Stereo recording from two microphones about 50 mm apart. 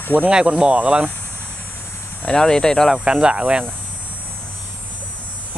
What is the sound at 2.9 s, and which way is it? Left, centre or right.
Speech, right.